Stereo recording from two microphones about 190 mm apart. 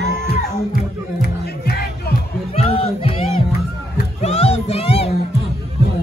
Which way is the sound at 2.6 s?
30° left (ahead or behind).